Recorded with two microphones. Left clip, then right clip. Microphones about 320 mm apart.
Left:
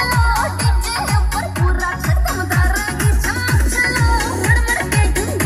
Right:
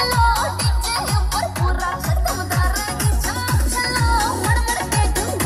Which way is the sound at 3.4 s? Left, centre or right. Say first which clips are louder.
Left 5 dB; centre.